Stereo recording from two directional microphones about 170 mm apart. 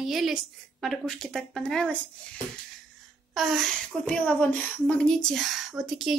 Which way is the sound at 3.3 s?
5° left (ahead or behind).